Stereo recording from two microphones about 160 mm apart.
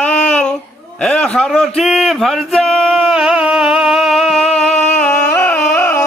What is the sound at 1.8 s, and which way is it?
Male singing, centre (ahead or behind).